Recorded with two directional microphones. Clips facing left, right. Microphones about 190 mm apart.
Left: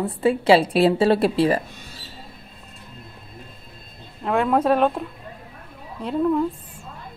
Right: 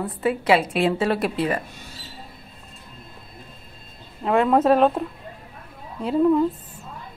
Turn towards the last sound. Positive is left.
turn(degrees=-5)  # may be behind; listen again after turning